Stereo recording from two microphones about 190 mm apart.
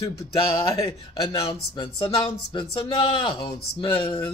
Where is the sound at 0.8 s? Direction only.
25° left (ahead or behind).